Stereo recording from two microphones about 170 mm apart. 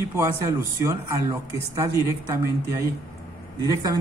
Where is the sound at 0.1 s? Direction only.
15° right (ahead or behind).